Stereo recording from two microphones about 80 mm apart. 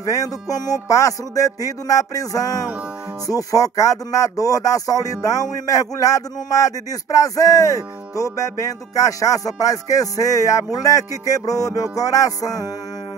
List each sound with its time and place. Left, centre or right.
0.0 s music: left